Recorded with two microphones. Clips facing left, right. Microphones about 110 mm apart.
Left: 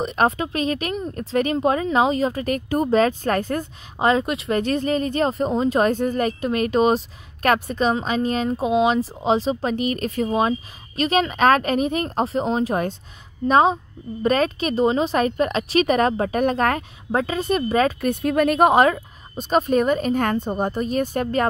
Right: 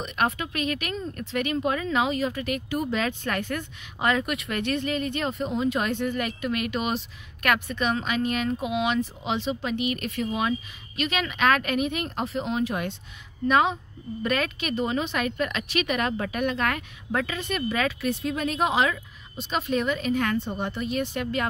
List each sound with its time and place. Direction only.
0.0 s a woman's voice: 35° left (ahead or behind)